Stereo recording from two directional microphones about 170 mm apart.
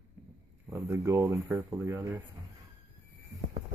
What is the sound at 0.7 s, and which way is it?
Speech, 15° right (ahead or behind).